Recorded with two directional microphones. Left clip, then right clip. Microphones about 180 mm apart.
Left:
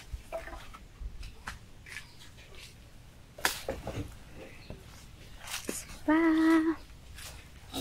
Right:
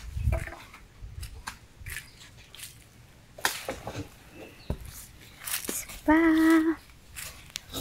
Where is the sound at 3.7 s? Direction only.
40° right (ahead or behind).